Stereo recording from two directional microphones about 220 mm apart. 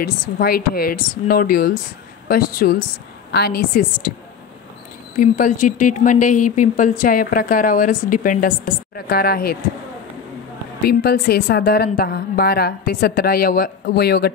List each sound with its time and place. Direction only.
0.0 s a woman's voice: 40° left (ahead or behind)
5.1 s speech: 35° left (ahead or behind)
10.8 s a woman's voice: 45° left (ahead or behind)